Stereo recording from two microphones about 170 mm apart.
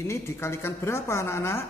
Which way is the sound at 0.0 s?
15° left (ahead or behind).